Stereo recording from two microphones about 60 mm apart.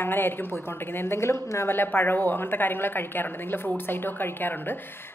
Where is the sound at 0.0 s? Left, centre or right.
Left.